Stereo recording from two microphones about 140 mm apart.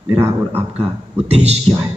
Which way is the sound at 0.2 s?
15° right (ahead or behind).